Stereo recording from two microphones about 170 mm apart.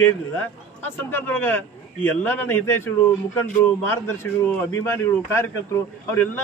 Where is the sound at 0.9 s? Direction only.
10° left (ahead or behind).